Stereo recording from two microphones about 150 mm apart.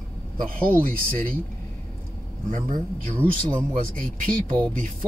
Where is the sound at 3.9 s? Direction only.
65° right (ahead or behind).